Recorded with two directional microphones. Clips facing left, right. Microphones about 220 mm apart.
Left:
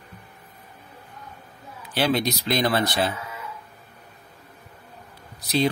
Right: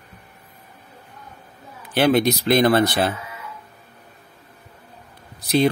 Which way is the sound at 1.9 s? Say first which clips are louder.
Right 6 dB; 55° right (ahead or behind).